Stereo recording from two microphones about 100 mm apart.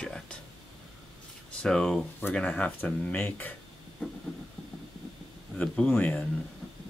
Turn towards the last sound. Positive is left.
turn(degrees=15)  # may be behind; listen again after turning